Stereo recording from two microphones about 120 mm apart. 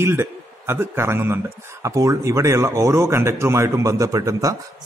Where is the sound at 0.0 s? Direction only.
20° right (ahead or behind).